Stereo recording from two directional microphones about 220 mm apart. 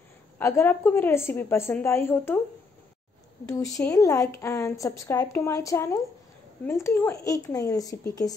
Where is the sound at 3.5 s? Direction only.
15° left (ahead or behind).